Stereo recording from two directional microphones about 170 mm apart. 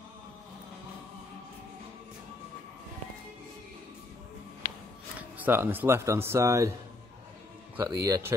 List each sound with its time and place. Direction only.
5.4 s speech: 10° right (ahead or behind)
7.7 s speech: 15° right (ahead or behind)